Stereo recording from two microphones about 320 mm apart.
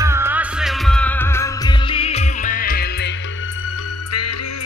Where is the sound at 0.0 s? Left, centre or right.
Centre; by 3.1 s left.